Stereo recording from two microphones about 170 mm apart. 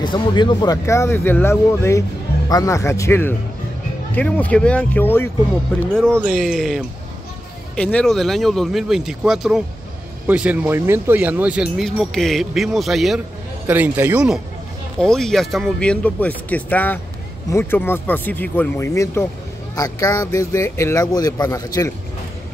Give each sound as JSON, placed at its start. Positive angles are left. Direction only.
{"t": 0.0, "sound": "speech", "side_deg": 25}
{"t": 6.1, "sound": "a man's voice", "side_deg": -5}